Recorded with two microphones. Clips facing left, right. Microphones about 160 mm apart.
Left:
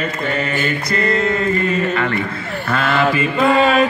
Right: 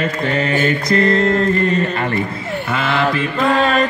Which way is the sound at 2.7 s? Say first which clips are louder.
Left 2 dB; centre (ahead or behind).